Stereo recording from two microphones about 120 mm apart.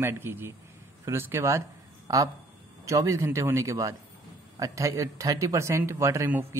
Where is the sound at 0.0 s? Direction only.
20° right (ahead or behind).